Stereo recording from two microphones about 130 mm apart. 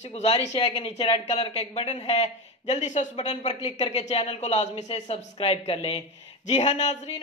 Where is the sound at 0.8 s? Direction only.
45° left (ahead or behind); by 3.1 s 70° left (ahead or behind).